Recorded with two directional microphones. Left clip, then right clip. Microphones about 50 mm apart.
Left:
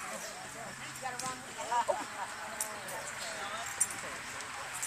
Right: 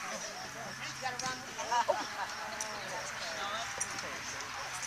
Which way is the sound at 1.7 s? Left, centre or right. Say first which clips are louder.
Right 1 dB; right.